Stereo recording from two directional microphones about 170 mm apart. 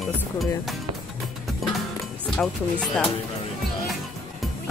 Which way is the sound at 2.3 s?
Centre (ahead or behind).